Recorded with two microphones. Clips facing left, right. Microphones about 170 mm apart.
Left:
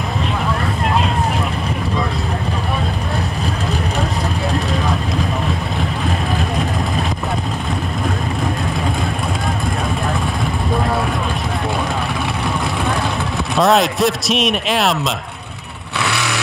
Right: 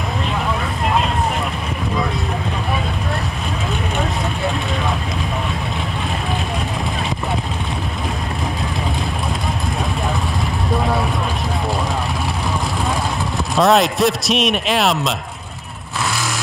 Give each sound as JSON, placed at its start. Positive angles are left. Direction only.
{"t": 13.6, "sound": "speech", "side_deg": 0}
{"t": 16.0, "sound": "vehicle", "side_deg": 65}